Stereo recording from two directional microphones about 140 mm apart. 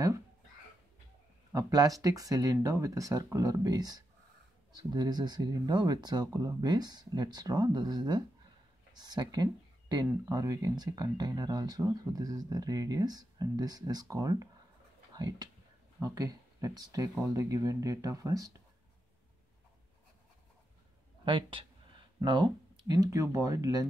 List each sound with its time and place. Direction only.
1.5 s speech: 25° right (ahead or behind)
21.3 s speech: 35° right (ahead or behind)